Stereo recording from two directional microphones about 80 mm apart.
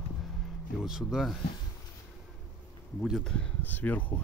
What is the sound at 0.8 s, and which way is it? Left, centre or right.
Speech, centre.